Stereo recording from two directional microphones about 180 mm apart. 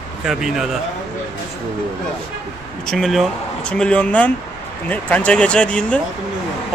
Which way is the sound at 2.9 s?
Centre (ahead or behind).